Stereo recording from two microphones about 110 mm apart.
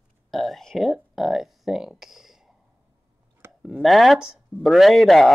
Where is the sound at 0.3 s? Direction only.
Centre (ahead or behind).